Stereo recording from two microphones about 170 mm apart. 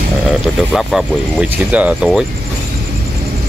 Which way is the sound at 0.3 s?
5° right (ahead or behind).